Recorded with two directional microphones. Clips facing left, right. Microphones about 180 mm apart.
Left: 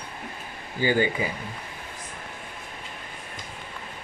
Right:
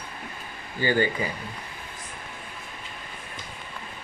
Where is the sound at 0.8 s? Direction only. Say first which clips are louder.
Left 1 dB; 10° left (ahead or behind).